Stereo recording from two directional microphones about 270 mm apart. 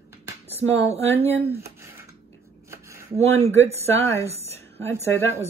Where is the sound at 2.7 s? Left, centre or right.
Centre.